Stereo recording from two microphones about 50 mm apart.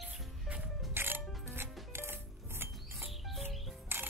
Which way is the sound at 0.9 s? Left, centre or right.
Right.